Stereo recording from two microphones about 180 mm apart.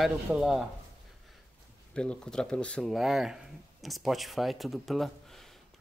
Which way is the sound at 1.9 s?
5° left (ahead or behind).